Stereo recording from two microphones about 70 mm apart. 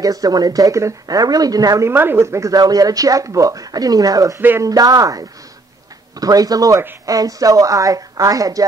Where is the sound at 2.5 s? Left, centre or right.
Right.